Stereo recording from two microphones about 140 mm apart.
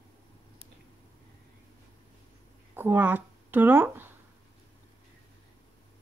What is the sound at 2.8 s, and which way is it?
Speech, 15° right (ahead or behind).